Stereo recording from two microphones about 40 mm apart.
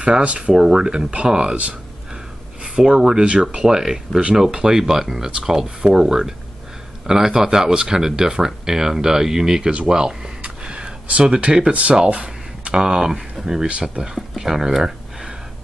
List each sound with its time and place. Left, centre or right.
0.2 s speech: right
2.6 s a sound: centre
3.0 s speech: centre
9.8 s a sound: centre
11.2 s speech: right
11.7 s speech: right; by 15.3 s centre